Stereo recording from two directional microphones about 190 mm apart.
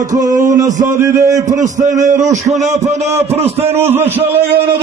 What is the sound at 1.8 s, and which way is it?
Speech, 40° right (ahead or behind).